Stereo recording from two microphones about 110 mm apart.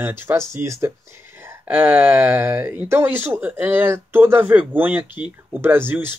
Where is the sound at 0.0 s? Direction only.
25° right (ahead or behind).